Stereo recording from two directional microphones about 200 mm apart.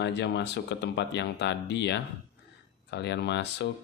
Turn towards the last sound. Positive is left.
turn(degrees=60)  # may be behind; listen again after turning